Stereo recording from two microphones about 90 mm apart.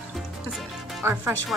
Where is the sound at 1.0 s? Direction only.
25° right (ahead or behind).